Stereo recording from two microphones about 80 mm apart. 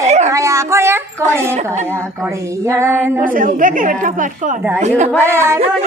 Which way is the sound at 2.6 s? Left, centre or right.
Right.